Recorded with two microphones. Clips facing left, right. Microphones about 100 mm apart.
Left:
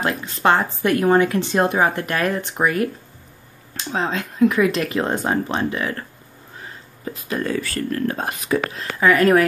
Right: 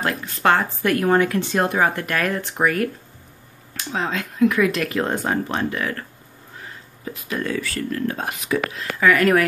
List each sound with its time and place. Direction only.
0.0 s speech: 20° left (ahead or behind)
7.1 s speech: 35° left (ahead or behind)
9.0 s speech: 30° left (ahead or behind)